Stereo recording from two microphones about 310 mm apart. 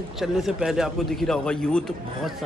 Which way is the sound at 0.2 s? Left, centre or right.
Centre.